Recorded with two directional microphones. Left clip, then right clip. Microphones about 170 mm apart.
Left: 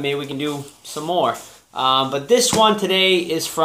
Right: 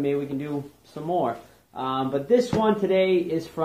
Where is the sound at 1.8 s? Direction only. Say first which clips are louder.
Left 9 dB; 20° left (ahead or behind).